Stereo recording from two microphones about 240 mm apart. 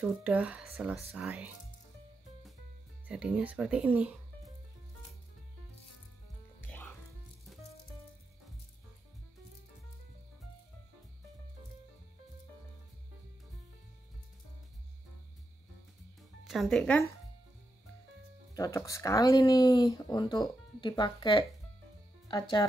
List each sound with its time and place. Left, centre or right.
0.0 s speech: centre
3.1 s speech: centre
6.6 s music: centre
16.2 s music: centre
18.5 s speech: centre